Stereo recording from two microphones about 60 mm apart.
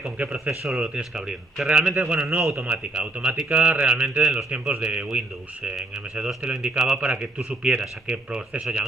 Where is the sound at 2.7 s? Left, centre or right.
Right.